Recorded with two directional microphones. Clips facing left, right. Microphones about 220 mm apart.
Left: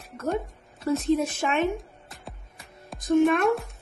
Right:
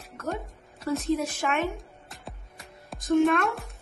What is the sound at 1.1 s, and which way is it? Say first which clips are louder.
Speech: left 3 dB; 25° left (ahead or behind).